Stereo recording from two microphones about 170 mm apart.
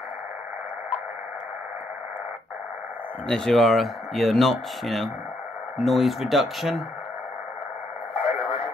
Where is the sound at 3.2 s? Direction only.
5° left (ahead or behind).